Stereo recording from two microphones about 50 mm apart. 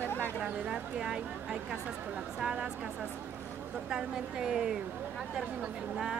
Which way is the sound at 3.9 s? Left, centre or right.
Centre.